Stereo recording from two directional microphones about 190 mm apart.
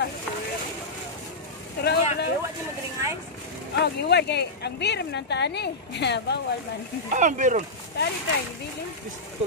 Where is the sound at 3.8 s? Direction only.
60° left (ahead or behind).